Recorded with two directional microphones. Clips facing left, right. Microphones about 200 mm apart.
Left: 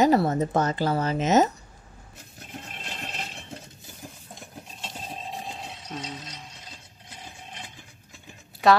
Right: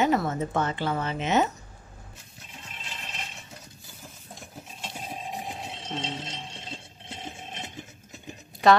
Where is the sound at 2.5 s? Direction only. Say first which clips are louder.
Left 5 dB; 60° left (ahead or behind).